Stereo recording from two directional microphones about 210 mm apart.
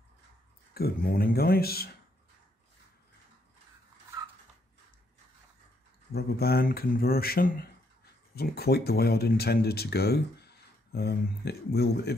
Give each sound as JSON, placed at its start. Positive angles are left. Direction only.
{"t": 0.7, "sound": "speech", "side_deg": 45}
{"t": 6.1, "sound": "speech", "side_deg": 45}